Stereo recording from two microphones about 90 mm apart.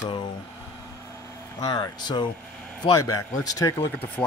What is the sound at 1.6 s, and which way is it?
Speech, 50° left (ahead or behind).